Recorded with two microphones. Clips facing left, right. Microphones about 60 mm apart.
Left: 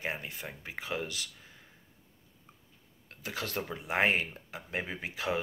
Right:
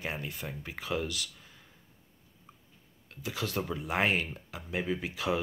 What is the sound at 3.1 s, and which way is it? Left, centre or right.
Speech, left.